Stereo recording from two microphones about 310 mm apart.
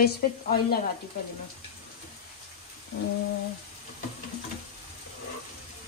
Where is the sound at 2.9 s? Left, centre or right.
Left.